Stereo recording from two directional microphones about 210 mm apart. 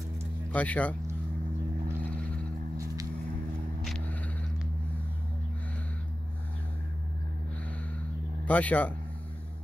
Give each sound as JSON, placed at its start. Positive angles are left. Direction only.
{"t": 0.5, "sound": "speech", "side_deg": 5}
{"t": 3.8, "sound": "a sound", "side_deg": 0}
{"t": 8.5, "sound": "speech", "side_deg": 5}